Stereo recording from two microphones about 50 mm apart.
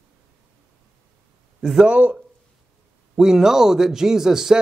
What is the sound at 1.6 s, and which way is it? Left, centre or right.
Speech, centre.